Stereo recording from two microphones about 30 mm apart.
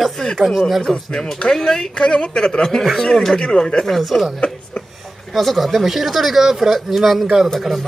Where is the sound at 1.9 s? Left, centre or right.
Left.